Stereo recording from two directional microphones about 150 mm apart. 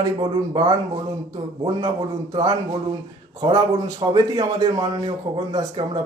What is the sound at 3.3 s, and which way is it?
Speech, 25° right (ahead or behind).